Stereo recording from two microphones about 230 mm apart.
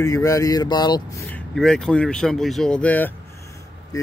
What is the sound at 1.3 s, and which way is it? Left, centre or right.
Speech, centre.